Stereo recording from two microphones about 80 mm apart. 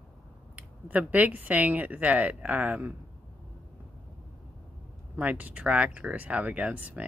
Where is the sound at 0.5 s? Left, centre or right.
Centre.